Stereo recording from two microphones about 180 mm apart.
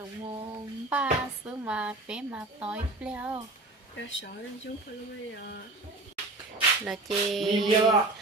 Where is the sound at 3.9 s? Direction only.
85° left.